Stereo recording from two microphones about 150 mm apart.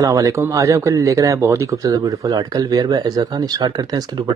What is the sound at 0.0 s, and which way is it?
Speech, 20° right (ahead or behind).